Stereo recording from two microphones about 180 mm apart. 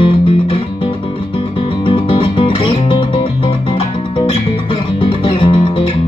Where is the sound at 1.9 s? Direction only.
30° left (ahead or behind).